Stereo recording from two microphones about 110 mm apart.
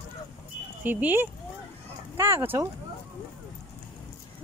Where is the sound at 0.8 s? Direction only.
15° right (ahead or behind).